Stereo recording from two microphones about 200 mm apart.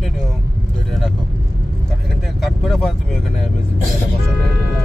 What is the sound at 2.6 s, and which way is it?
Vehicle, centre (ahead or behind).